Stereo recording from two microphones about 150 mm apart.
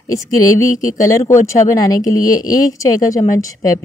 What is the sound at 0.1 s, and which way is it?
Speech, 20° left (ahead or behind).